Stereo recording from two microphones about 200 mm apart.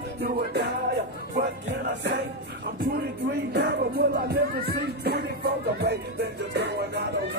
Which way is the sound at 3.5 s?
55° right (ahead or behind).